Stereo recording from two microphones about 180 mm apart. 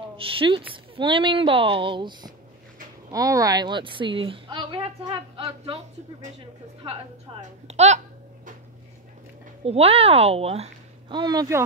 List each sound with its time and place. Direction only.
0.2 s a woman's voice: 30° right (ahead or behind)
7.3 s a woman's voice: 30° right (ahead or behind)
9.7 s a woman's voice: 35° right (ahead or behind)